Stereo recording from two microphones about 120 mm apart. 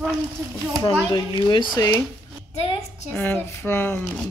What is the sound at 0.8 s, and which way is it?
Speech, 35° left (ahead or behind).